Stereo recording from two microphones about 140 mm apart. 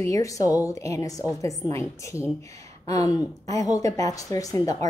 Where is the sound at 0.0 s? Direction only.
25° left (ahead or behind).